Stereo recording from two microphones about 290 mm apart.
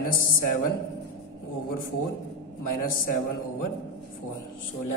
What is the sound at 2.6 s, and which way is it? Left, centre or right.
Speech, left.